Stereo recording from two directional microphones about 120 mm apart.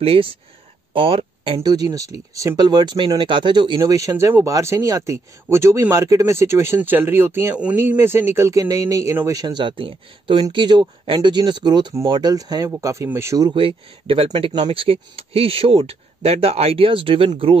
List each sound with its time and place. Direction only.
0.0 s speech: 50° right (ahead or behind)
1.6 s speech: 35° right (ahead or behind)
3.8 s speech: 25° right (ahead or behind)
9.3 s speech: 35° right (ahead or behind)
13.6 s speech: 50° right (ahead or behind)